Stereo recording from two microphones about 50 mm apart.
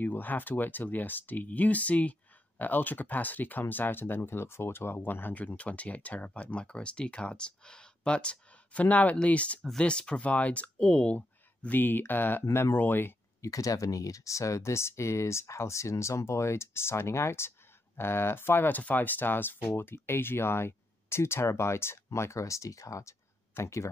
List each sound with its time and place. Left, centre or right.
0.0 s speech: left
5.6 s speech: left
11.7 s speech: left
12.4 s speech: left
12.7 s speech: left
13.4 s speech: left
18.7 s speech: left